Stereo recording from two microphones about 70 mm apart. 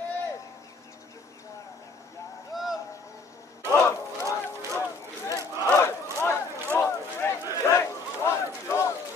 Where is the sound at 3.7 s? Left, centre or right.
Left.